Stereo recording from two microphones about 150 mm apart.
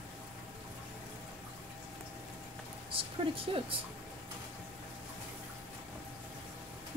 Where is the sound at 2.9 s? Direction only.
40° right (ahead or behind).